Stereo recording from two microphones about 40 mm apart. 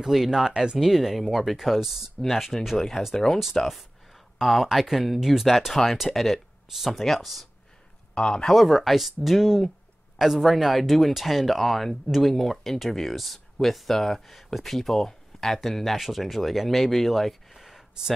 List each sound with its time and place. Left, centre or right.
0.0 s speech: centre
3.6 s speech: centre
4.4 s speech: centre
8.1 s speech: centre
8.5 s speech: centre